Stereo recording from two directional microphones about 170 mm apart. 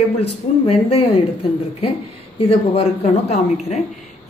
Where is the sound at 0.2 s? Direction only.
35° left (ahead or behind).